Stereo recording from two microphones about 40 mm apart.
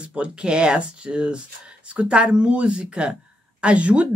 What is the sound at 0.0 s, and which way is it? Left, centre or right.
Speech, right.